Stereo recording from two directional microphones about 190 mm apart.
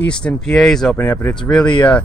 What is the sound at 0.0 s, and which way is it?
Speech, 5° left (ahead or behind).